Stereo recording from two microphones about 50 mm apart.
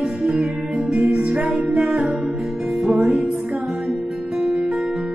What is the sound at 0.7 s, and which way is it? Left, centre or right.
Music, centre.